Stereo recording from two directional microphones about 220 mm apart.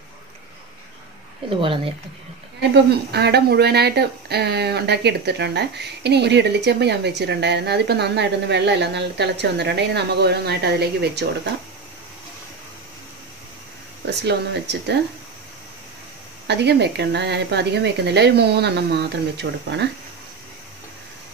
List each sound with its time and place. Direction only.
1.5 s speech: 25° right (ahead or behind)
2.7 s speech: 50° right (ahead or behind)
14.2 s speech: 50° right (ahead or behind)
16.4 s speech: 50° right (ahead or behind)